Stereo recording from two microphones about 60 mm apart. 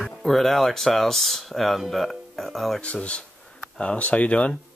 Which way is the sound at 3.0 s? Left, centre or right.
Centre.